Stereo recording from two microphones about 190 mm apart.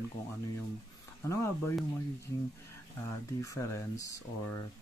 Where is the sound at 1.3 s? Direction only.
15° left (ahead or behind).